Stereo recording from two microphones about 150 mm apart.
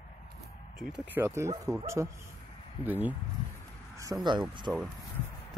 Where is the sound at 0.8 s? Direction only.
10° right (ahead or behind).